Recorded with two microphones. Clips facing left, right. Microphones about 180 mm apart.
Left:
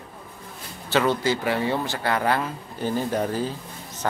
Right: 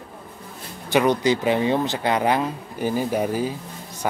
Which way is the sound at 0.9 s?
15° right (ahead or behind).